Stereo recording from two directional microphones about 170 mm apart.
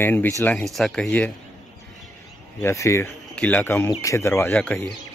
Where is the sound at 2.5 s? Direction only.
15° left (ahead or behind).